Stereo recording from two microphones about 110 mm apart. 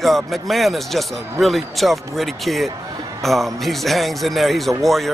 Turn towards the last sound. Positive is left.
turn(degrees=0)  # may be behind; listen again after turning